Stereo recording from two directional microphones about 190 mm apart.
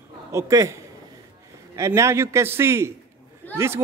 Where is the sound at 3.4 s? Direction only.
10° left (ahead or behind).